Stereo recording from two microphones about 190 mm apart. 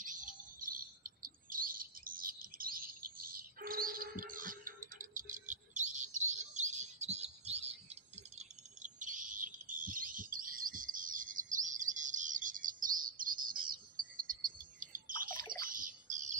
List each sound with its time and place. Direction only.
0.0 s chirp: 45° right (ahead or behind)
14.6 s cricket: 45° right (ahead or behind)
15.7 s bird: 40° right (ahead or behind)